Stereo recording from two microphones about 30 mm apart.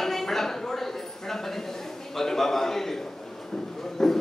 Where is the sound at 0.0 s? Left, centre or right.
Centre.